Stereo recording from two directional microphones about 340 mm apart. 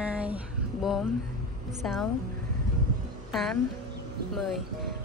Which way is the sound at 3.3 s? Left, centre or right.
Centre.